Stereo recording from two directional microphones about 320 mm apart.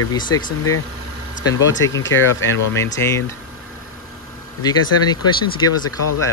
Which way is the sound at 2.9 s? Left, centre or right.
Centre.